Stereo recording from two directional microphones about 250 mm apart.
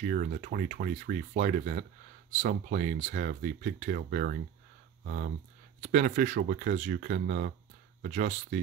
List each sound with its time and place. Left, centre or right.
0.1 s speech: right